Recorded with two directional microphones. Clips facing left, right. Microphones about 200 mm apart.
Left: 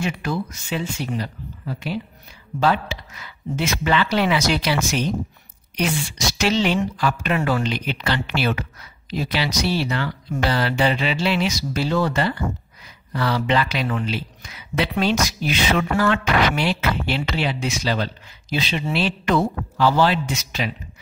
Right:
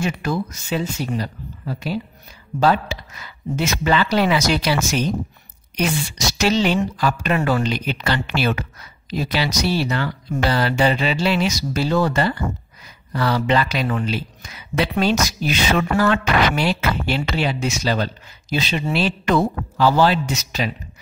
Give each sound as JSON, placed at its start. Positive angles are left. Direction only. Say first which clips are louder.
{"t": 0.0, "sound": "speech", "louder": "right 2 dB", "side_deg": -40}